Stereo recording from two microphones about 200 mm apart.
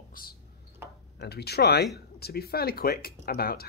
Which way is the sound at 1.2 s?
55° left (ahead or behind).